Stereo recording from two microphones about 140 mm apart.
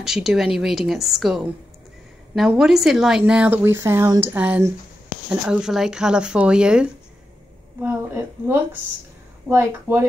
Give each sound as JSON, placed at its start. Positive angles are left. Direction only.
{"t": 0.0, "sound": "speech", "side_deg": -5}